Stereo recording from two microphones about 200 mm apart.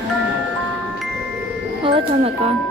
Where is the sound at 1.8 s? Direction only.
25° right (ahead or behind).